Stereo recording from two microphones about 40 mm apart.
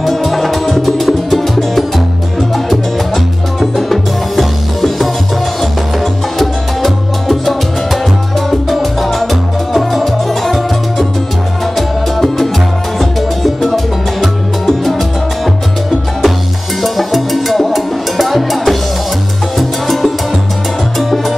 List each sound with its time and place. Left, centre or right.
0.0 s music: centre
3.5 s music: centre
6.3 s salsa music: centre
8.7 s music: centre
16.8 s music: centre